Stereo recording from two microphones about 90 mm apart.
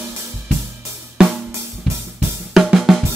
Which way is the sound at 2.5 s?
5° right (ahead or behind).